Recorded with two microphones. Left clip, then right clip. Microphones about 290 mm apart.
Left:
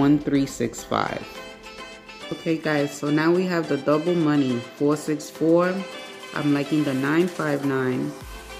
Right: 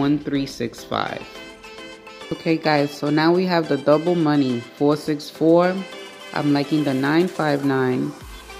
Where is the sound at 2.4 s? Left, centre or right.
Centre.